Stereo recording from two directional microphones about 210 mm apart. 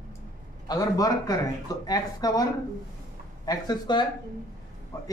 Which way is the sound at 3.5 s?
20° left (ahead or behind).